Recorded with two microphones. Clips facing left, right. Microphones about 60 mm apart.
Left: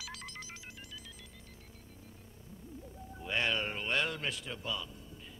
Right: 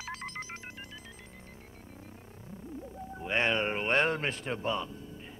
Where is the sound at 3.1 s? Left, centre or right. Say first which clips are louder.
Right 4 dB; right.